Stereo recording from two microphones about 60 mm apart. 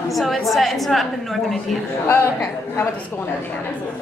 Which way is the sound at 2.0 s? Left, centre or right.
Left.